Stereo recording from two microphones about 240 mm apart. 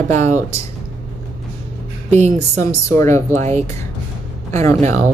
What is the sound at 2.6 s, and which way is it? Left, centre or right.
Speech, centre.